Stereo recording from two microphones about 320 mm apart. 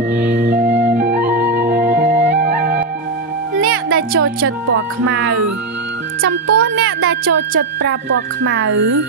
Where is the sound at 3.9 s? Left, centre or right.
Right.